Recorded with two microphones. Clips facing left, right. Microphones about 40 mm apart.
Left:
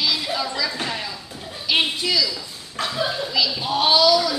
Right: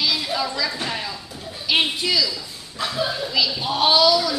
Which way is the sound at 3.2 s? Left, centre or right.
Centre.